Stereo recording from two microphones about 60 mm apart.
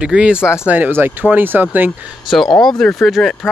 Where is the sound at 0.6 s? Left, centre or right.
Right.